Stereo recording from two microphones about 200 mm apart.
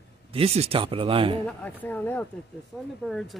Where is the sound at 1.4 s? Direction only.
10° left (ahead or behind).